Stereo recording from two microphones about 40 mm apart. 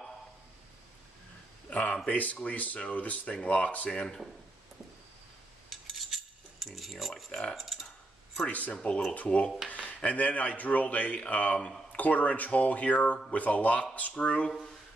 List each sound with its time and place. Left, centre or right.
1.7 s a sound: left
2.0 s speech: left
5.7 s cutlery: centre
7.5 s speech: centre
8.5 s speech: left
9.7 s a sound: left
10.0 s speech: left